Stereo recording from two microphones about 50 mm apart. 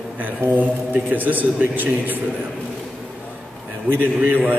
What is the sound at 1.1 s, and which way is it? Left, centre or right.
Speech, right.